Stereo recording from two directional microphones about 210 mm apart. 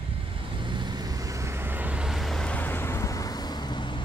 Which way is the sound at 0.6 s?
20° right (ahead or behind).